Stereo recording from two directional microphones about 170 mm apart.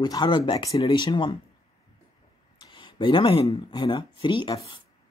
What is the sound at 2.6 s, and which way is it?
Speech, 30° left (ahead or behind).